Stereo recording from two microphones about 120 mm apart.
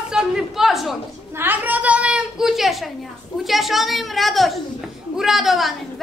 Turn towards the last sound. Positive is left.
turn(degrees=0)  # may be behind; listen again after turning